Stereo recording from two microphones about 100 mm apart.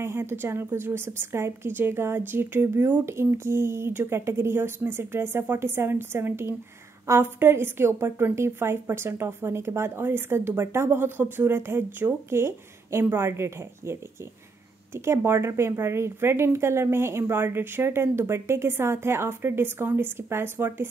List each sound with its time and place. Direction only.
0.0 s a woman's voice: 25° right (ahead or behind)
15.0 s a woman's voice: 25° right (ahead or behind)